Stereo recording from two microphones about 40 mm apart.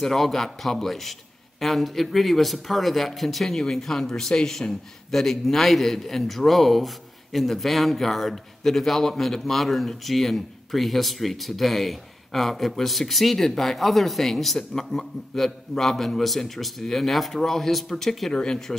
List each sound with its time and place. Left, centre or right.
0.0 s a man's voice: centre
18.3 s speech: left